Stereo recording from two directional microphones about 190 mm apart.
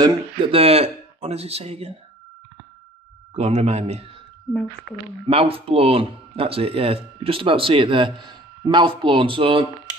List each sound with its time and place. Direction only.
0.0 s speech: 30° right (ahead or behind)
3.3 s speech: 35° right (ahead or behind)
4.5 s speech: 5° right (ahead or behind)
5.2 s speech: 30° right (ahead or behind)